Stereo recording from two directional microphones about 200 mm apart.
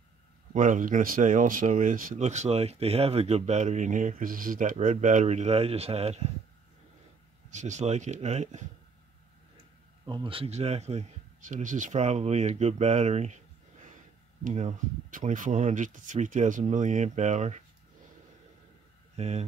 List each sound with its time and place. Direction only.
0.5 s speech: 40° right (ahead or behind)
7.5 s speech: 35° right (ahead or behind)
10.0 s speech: 25° right (ahead or behind)
14.4 s speech: 35° right (ahead or behind)
19.1 s speech: 30° right (ahead or behind)